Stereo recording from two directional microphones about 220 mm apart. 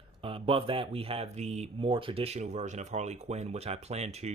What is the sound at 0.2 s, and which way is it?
Speech, 25° right (ahead or behind).